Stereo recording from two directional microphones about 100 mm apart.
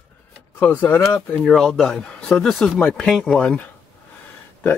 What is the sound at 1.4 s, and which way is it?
Speech, 5° left (ahead or behind).